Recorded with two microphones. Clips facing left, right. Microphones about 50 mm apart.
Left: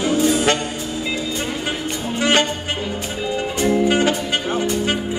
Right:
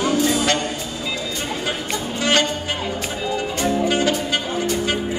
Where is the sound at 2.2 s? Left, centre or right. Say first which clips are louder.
Left 2 dB; left.